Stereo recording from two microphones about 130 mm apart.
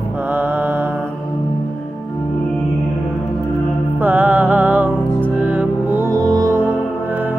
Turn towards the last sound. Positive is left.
turn(degrees=-15)  # may be behind; listen again after turning